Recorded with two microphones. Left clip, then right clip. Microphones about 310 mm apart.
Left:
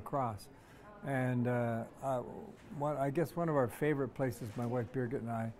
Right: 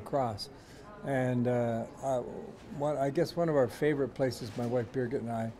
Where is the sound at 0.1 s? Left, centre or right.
Centre.